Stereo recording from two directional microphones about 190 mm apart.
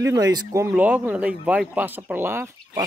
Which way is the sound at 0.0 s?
20° right (ahead or behind).